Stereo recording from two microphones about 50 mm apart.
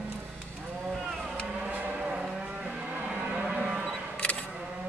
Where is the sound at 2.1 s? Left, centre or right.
Centre.